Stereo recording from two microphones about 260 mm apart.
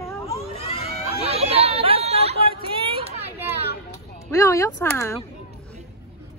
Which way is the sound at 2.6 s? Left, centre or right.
Centre.